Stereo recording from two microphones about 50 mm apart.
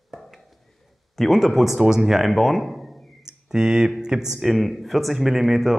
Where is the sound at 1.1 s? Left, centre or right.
Centre.